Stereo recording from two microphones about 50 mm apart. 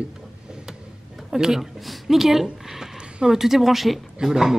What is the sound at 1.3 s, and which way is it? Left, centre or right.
A man's voice, centre.